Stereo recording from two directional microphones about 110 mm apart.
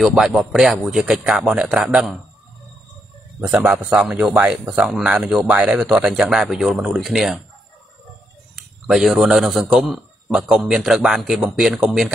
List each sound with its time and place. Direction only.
0.2 s a man's voice: centre (ahead or behind)
3.3 s speech: 15° right (ahead or behind)
3.7 s a man's voice: 5° right (ahead or behind)
8.8 s a man's voice: 5° right (ahead or behind)